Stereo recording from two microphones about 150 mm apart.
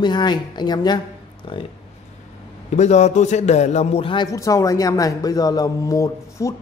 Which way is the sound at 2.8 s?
50° left (ahead or behind).